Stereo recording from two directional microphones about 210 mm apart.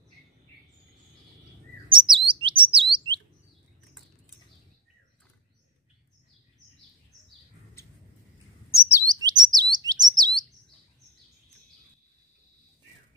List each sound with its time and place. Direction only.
1.9 s chirp: 25° right (ahead or behind)
8.6 s chirp: 10° left (ahead or behind)
9.0 s chirp: 20° right (ahead or behind)